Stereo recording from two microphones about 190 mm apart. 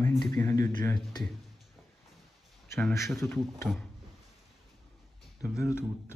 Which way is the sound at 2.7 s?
10° left (ahead or behind).